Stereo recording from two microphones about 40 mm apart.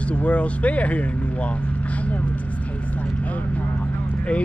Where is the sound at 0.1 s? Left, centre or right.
Left.